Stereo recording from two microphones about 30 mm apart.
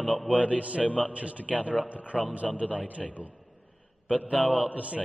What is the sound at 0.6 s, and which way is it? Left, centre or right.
A man's voice, right.